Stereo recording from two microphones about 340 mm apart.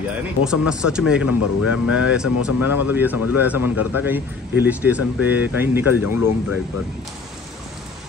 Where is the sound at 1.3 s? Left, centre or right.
Left.